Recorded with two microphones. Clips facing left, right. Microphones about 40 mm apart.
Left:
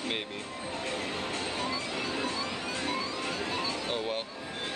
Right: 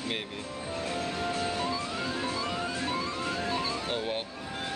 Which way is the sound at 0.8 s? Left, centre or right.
Left.